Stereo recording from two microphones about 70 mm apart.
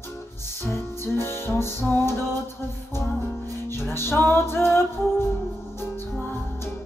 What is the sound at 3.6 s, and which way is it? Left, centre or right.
Music, left.